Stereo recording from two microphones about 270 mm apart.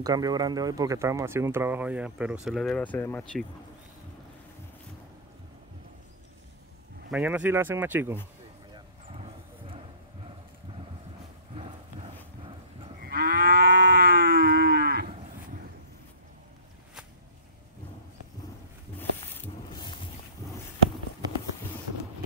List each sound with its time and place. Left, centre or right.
0.0 s speech: centre
7.1 s speech: centre
8.7 s vehicle: right
11.5 s horse: right
13.0 s livestock: right
18.9 s a sound: centre